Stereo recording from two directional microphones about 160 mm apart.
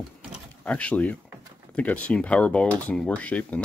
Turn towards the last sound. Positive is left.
turn(degrees=10)  # may be behind; listen again after turning